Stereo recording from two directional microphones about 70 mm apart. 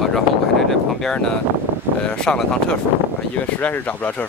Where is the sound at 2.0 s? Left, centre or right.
Centre.